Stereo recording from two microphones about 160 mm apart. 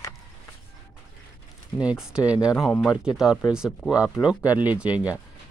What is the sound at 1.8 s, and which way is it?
Speech, 5° right (ahead or behind).